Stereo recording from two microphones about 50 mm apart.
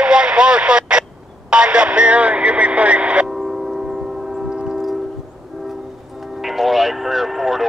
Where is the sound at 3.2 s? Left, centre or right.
Centre.